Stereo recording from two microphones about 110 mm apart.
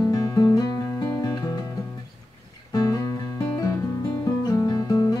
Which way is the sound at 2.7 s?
35° left (ahead or behind).